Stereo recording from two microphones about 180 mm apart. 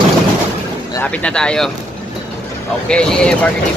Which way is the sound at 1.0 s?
5° left (ahead or behind).